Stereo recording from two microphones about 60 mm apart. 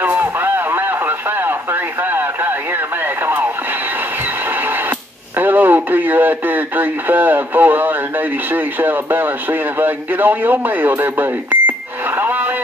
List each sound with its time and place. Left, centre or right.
0.0 s radio: right
5.4 s speech: right
12.2 s a sound: right